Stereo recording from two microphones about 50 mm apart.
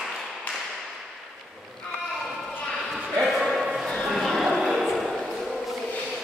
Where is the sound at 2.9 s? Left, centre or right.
Centre.